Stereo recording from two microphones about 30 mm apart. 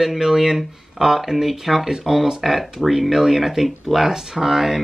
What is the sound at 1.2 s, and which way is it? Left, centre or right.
Speech, centre.